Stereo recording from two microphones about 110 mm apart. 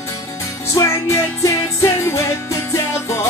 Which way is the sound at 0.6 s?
25° left (ahead or behind).